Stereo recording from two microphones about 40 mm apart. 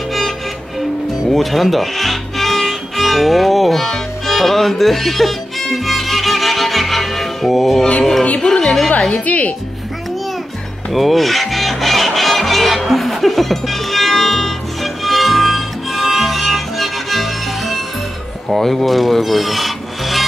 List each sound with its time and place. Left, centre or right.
0.7 s music: centre
8.4 s speech: centre
9.2 s speech: left
10.9 s music: centre
18.6 s rub: centre